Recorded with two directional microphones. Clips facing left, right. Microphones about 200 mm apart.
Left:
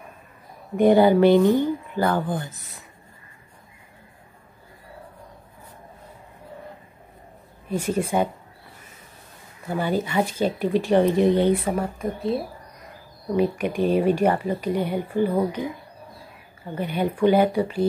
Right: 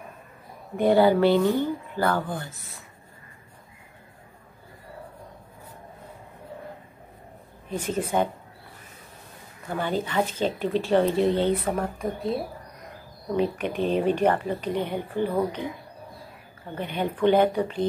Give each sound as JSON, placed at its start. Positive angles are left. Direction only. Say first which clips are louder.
{"t": 0.7, "sound": "speech", "louder": "left 3 dB", "side_deg": 15}
{"t": 7.7, "sound": "speech", "louder": "left 3 dB", "side_deg": 10}
{"t": 9.7, "sound": "speech", "louder": "left 3 dB", "side_deg": 10}
{"t": 16.7, "sound": "speech", "louder": "left 4 dB", "side_deg": 10}